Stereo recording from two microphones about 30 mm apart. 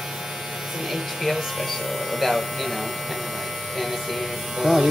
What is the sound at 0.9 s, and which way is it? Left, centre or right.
Speech, centre.